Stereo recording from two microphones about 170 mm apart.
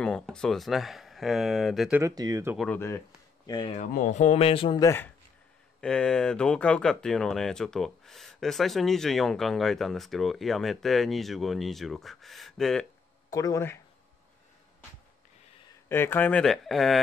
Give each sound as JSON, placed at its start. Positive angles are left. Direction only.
{"t": 0.0, "sound": "speech", "side_deg": 5}
{"t": 2.0, "sound": "speech", "side_deg": -20}
{"t": 2.7, "sound": "speech", "side_deg": 15}
{"t": 3.7, "sound": "speech", "side_deg": 50}
{"t": 4.8, "sound": "speech", "side_deg": 15}
{"t": 13.3, "sound": "speech", "side_deg": 20}
{"t": 15.9, "sound": "speech", "side_deg": 15}